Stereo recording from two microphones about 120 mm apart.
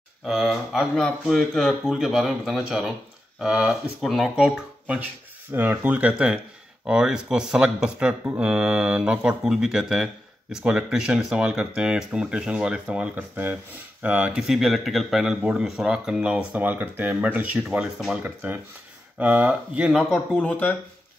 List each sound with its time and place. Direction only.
0.2 s speech: centre (ahead or behind)
18.2 s speech: 15° right (ahead or behind)
20.0 s a man's voice: 5° left (ahead or behind)